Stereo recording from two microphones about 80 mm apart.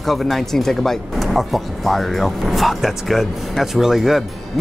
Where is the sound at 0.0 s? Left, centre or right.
Centre.